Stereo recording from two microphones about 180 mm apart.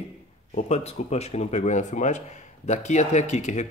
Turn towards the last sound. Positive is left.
turn(degrees=40)  # may be behind; listen again after turning